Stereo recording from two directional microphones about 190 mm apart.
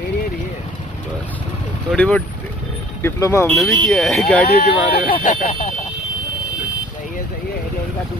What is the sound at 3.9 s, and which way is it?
Speech, centre (ahead or behind).